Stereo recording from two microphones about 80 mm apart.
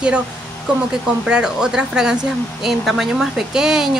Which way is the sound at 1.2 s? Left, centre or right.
Centre.